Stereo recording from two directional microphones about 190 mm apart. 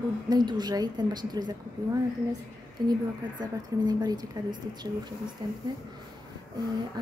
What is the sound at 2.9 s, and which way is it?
Speech, 20° right (ahead or behind).